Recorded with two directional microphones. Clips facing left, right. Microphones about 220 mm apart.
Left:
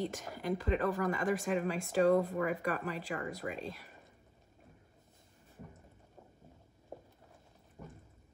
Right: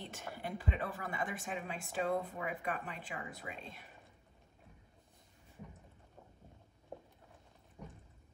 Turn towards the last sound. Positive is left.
turn(degrees=0)  # may be behind; listen again after turning